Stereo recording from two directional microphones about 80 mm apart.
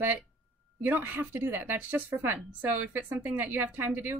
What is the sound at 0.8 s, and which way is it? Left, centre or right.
A woman's voice, right.